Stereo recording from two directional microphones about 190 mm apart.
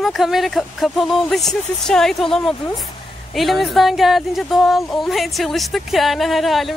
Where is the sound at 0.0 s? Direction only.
Centre (ahead or behind).